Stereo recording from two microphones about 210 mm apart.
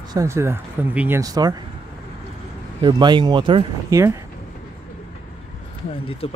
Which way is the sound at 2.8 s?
20° right (ahead or behind).